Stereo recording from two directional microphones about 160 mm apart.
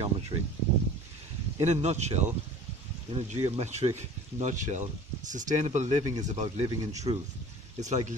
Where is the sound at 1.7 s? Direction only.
45° right (ahead or behind).